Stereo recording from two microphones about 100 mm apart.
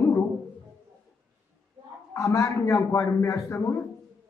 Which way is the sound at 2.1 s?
30° left (ahead or behind).